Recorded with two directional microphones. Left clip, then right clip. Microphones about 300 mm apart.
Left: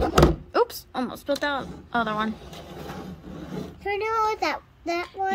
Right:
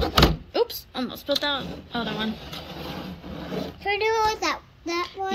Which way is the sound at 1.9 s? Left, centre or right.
Centre.